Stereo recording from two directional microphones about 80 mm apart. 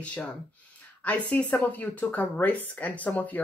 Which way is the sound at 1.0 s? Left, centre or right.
Centre.